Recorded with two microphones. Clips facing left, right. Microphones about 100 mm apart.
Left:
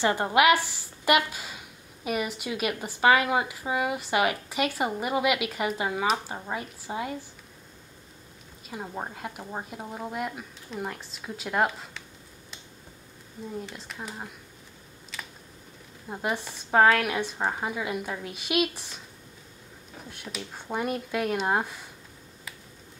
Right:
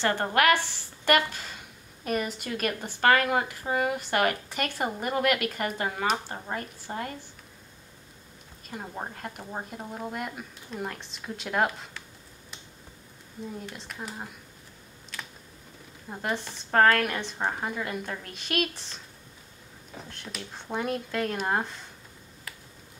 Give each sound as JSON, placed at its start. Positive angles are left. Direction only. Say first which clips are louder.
{"t": 0.0, "sound": "a woman's voice", "louder": "left 2 dB", "side_deg": 10}
{"t": 8.6, "sound": "a woman's voice", "louder": "left 1 dB", "side_deg": 5}
{"t": 13.6, "sound": "a woman's voice", "louder": "left 1 dB", "side_deg": 0}
{"t": 16.1, "sound": "a woman's voice", "louder": "left 1 dB", "side_deg": 5}
{"t": 20.2, "sound": "a woman's voice", "louder": "left 2 dB", "side_deg": 5}